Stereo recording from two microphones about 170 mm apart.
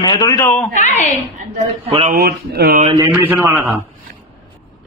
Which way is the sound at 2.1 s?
70° right (ahead or behind).